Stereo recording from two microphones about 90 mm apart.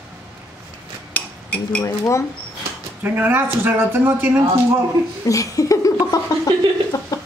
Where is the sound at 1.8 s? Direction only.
35° left (ahead or behind).